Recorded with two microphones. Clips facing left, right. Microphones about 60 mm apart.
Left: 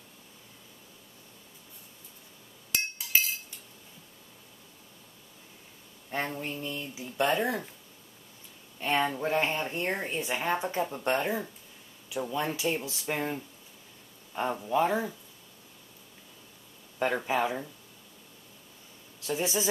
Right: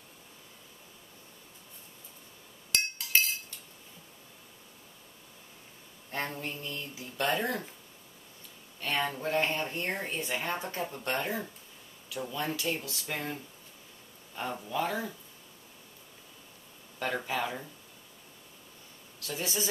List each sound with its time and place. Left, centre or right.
2.7 s chink: centre
6.0 s speech: centre
8.7 s speech: left
17.3 s speech: left
19.1 s speech: left